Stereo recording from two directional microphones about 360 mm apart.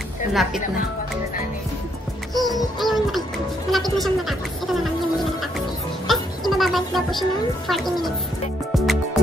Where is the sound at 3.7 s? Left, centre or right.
Centre.